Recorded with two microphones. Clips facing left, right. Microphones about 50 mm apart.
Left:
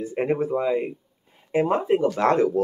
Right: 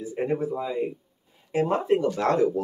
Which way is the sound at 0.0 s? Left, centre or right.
Left.